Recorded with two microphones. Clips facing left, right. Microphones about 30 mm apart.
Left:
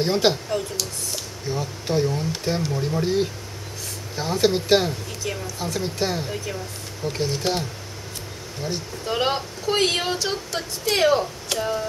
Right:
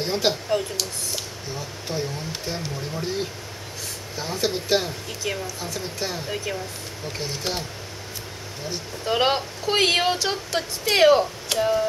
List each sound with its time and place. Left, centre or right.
0.0 s speech: centre
0.5 s speech: centre
1.5 s speech: centre
5.2 s speech: centre
5.6 s speech: centre
6.2 s speech: centre
7.1 s speech: centre
9.0 s speech: centre